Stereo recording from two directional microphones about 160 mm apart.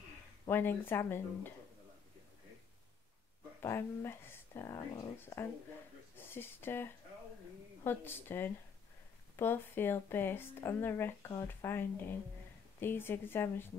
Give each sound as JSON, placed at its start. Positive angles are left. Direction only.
{"t": 0.5, "sound": "speech", "side_deg": 15}
{"t": 3.6, "sound": "speech", "side_deg": 15}